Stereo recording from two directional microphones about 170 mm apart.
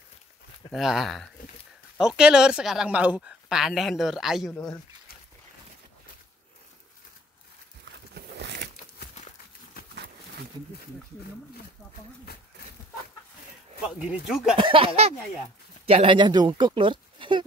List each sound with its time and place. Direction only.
0.7 s speech: centre (ahead or behind)
8.1 s a sound: 80° right
13.8 s speech: 5° right (ahead or behind)
14.6 s speech: 30° right (ahead or behind)